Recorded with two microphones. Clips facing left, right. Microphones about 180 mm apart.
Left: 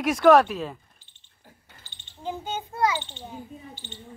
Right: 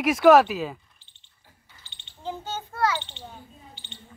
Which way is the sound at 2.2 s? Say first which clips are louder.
Left 1 dB; 15° left (ahead or behind).